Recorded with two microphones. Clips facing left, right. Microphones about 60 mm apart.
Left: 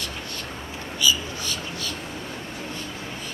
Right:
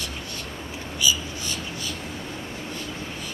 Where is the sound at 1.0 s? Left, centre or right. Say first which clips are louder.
Left 2 dB; right.